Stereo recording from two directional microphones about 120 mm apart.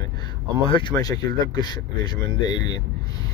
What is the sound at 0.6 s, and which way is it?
Speech, 45° left (ahead or behind).